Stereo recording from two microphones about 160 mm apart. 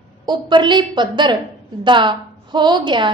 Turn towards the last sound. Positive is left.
turn(degrees=-30)  # may be behind; listen again after turning